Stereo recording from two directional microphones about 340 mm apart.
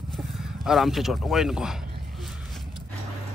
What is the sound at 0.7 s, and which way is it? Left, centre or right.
A man's voice, centre.